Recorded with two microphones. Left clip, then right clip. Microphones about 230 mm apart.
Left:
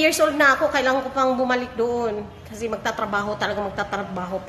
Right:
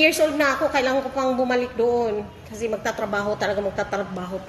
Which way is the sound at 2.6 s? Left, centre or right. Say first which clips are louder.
Even; left.